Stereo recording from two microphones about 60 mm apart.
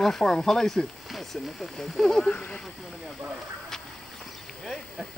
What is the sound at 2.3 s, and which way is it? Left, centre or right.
Speech, left.